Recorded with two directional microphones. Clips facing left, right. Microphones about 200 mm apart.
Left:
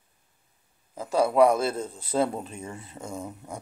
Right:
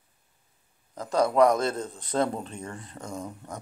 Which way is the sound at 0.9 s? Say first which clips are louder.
Left 1 dB; 5° left (ahead or behind).